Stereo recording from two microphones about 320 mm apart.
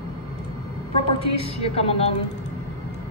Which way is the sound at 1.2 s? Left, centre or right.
Centre.